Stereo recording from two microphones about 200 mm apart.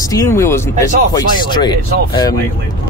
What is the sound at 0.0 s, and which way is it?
Speech, 15° left (ahead or behind).